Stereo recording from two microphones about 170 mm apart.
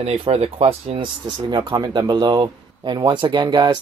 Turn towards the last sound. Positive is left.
turn(degrees=-25)  # may be behind; listen again after turning